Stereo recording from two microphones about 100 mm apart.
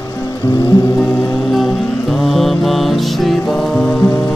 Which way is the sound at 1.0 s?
10° left (ahead or behind).